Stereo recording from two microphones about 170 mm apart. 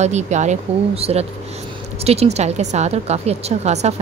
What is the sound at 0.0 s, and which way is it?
Speech, 45° right (ahead or behind).